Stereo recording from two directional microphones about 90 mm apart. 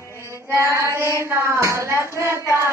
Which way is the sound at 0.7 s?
30° right (ahead or behind).